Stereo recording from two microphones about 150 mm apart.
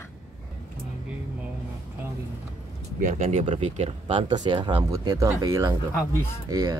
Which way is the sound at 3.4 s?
40° right (ahead or behind).